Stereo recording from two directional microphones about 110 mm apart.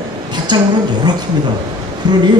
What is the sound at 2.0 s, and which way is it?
Speech, 40° right (ahead or behind).